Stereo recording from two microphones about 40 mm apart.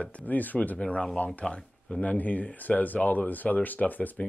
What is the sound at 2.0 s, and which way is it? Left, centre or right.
Speech, left.